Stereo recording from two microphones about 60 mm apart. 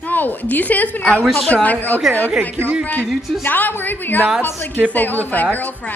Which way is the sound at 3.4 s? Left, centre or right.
Left.